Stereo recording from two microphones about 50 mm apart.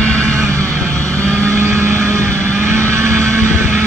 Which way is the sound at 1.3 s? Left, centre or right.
Right.